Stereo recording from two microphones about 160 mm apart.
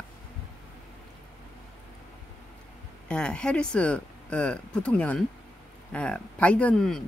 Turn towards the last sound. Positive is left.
turn(degrees=5)  # may be behind; listen again after turning